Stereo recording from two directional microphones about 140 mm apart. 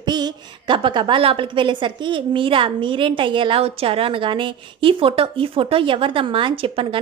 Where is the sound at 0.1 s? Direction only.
35° right (ahead or behind).